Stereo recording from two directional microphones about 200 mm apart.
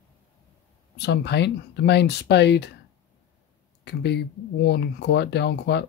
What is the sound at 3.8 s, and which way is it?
Speech, 60° left (ahead or behind).